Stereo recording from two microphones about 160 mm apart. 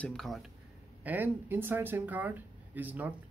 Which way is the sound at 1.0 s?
10° right (ahead or behind).